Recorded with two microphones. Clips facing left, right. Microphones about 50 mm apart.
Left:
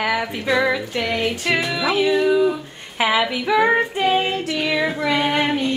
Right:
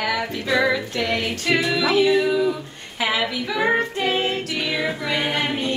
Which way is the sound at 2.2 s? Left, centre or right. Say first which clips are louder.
Left 3 dB; centre.